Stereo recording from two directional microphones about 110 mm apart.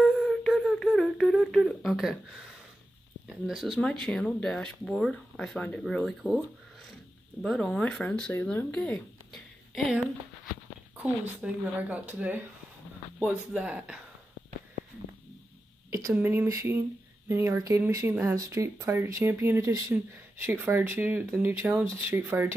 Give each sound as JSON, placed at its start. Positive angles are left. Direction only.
{"t": 0.0, "sound": "humming", "side_deg": 0}
{"t": 3.3, "sound": "speech", "side_deg": -5}
{"t": 7.4, "sound": "speech", "side_deg": 5}
{"t": 9.3, "sound": "a sound", "side_deg": 0}
{"t": 11.0, "sound": "speech", "side_deg": -15}
{"t": 15.9, "sound": "a sound", "side_deg": -30}
{"t": 16.2, "sound": "speech", "side_deg": -20}